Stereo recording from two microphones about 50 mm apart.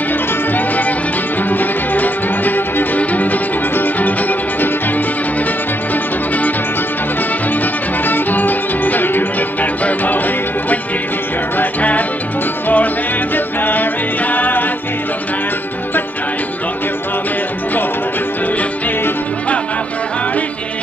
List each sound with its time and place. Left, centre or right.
0.5 s music: left
8.0 s music: left